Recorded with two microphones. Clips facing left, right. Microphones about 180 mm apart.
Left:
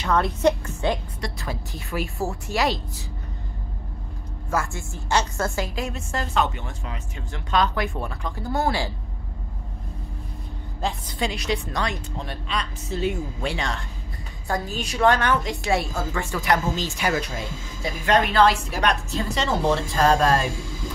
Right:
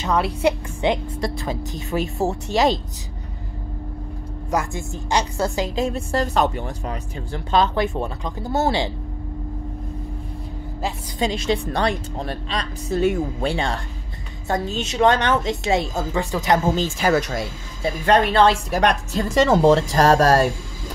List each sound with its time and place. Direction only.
0.0 s a woman's voice: 10° right (ahead or behind)
4.5 s a woman's voice: 15° right (ahead or behind)
5.8 s speech: 30° right (ahead or behind)
11.1 s a woman's voice: 25° right (ahead or behind)
12.9 s speech: 50° right (ahead or behind)
13.4 s a woman's voice: 30° right (ahead or behind)
17.1 s speech: 80° right
18.0 s speech: 30° right (ahead or behind)
18.7 s speech: 45° right (ahead or behind)